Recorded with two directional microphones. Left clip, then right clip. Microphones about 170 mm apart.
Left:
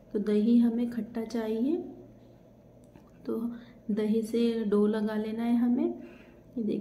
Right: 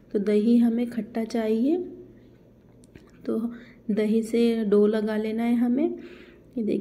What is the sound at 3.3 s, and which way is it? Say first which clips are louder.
Speech: right 5 dB; 25° right (ahead or behind).